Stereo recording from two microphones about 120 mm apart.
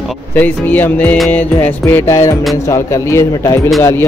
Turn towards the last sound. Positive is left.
turn(degrees=20)  # may be behind; listen again after turning